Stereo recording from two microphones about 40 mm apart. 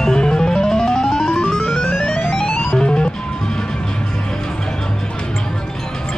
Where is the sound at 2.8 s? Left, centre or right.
Left.